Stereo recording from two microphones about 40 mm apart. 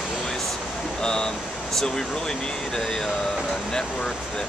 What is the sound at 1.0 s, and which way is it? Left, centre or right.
Speech, centre.